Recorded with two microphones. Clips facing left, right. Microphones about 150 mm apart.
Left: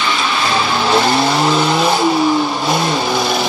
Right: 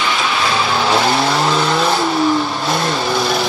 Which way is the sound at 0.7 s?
5° right (ahead or behind).